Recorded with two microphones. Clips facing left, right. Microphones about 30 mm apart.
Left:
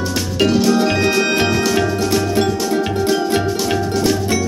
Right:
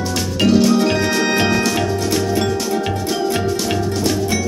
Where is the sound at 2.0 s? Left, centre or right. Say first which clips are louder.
Left 2 dB; centre.